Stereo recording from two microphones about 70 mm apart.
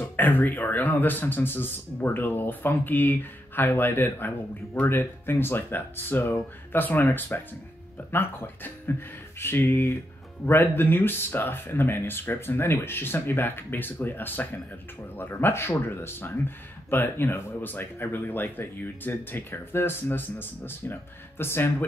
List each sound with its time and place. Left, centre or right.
0.0 s a man's voice: left